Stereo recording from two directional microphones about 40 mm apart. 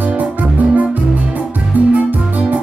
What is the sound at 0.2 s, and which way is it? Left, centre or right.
Music, right.